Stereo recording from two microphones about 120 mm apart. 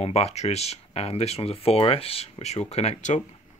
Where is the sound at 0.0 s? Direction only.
60° left (ahead or behind); by 3.3 s 90° left.